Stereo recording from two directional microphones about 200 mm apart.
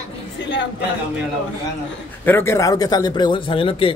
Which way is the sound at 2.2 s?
10° left (ahead or behind).